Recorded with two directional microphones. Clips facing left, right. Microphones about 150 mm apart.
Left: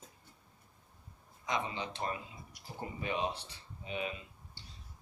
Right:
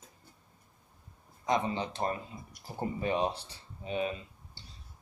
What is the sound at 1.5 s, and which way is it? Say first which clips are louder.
Speech: right 6 dB; 40° right (ahead or behind).